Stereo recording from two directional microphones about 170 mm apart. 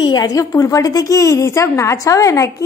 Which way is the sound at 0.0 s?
25° left (ahead or behind).